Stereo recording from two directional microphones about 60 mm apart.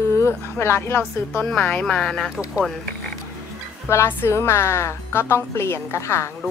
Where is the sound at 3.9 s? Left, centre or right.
Left.